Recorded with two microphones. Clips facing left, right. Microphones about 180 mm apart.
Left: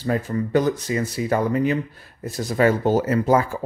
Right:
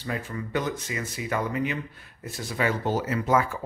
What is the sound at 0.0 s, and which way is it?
Speech, 40° left (ahead or behind).